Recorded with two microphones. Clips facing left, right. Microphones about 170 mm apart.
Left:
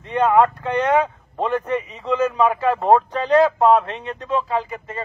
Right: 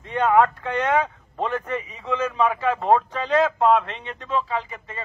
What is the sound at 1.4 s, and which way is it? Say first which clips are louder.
A man's voice: left 4 dB; 35° left (ahead or behind).